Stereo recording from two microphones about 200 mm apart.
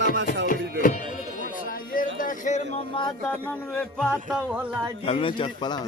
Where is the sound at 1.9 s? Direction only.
40° left (ahead or behind).